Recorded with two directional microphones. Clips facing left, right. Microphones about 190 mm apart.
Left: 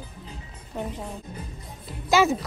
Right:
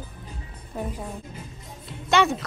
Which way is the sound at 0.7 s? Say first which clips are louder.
Even; 5° right (ahead or behind).